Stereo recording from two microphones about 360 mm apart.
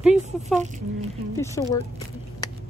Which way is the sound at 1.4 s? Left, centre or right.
Centre.